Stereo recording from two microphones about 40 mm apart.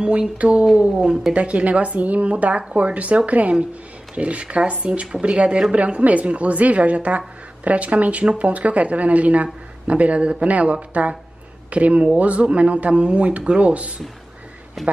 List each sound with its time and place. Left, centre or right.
0.4 s speech: right
1.0 s a woman's voice: centre
1.3 s a woman's voice: right
4.8 s a woman's voice: right